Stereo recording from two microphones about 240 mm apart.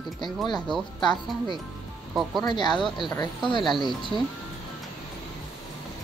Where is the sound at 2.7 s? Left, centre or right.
Centre.